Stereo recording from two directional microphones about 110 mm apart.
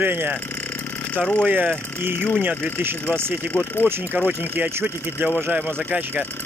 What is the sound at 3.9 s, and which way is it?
Speech, 20° right (ahead or behind).